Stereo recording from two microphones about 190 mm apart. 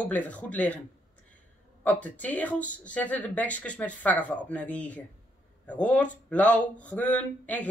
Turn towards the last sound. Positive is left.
turn(degrees=10)  # may be behind; listen again after turning